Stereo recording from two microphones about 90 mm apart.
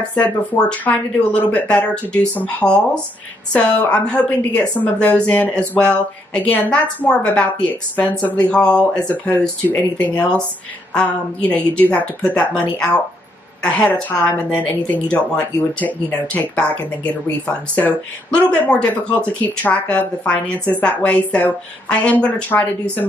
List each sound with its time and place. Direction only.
0.1 s a woman's voice: 15° left (ahead or behind)
13.7 s a woman's voice: 15° left (ahead or behind)